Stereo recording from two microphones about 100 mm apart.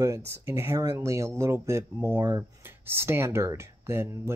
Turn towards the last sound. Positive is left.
turn(degrees=-25)  # may be behind; listen again after turning